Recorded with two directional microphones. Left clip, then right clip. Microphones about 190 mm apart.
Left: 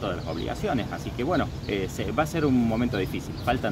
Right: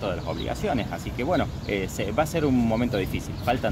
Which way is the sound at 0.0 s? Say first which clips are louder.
Right 1 dB; 5° right (ahead or behind).